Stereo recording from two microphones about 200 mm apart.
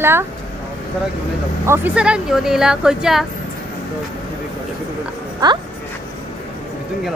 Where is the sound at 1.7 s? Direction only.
5° right (ahead or behind).